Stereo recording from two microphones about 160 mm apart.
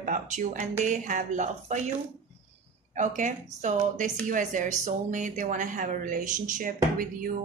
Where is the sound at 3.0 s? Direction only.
50° right (ahead or behind).